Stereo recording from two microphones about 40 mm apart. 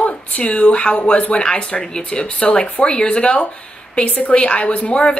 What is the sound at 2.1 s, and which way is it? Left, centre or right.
A woman's voice, left.